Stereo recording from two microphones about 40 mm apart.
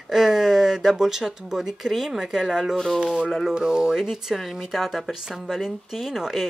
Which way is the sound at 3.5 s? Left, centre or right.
Centre.